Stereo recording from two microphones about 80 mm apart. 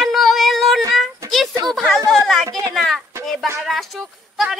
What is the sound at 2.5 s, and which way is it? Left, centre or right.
Speech, right.